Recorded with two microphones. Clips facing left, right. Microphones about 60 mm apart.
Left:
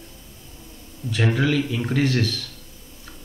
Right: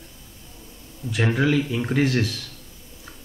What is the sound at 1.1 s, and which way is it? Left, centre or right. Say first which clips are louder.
Speech: even; centre.